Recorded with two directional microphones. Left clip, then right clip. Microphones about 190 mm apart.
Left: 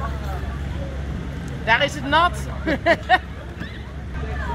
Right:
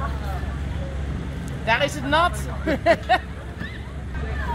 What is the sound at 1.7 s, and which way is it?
Vehicle, 60° right (ahead or behind).